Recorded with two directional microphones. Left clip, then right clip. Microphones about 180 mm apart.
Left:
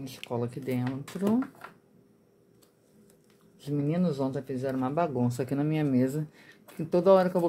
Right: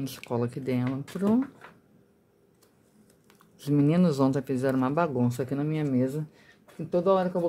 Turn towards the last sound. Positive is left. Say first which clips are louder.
# left 2 dB
turn(degrees=15)  # may be behind; listen again after turning